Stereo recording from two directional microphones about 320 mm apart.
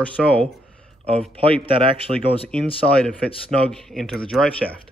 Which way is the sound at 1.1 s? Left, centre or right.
Centre.